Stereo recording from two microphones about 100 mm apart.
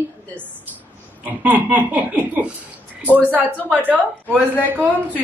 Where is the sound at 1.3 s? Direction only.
15° right (ahead or behind).